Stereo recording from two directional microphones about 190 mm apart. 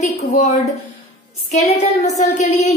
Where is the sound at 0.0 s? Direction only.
40° left (ahead or behind).